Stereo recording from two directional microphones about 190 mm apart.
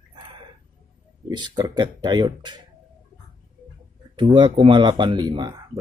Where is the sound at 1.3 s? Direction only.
20° right (ahead or behind).